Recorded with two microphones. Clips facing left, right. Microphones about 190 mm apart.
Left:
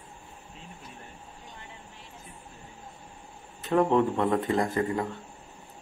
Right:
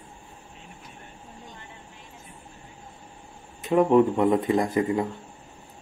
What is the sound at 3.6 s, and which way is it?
Speech, 10° right (ahead or behind).